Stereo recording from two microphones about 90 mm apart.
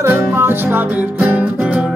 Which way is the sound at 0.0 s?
25° right (ahead or behind).